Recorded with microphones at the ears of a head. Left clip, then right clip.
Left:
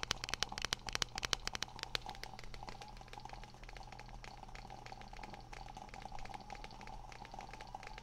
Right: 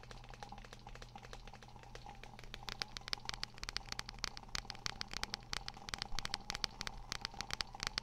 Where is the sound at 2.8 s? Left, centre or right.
Right.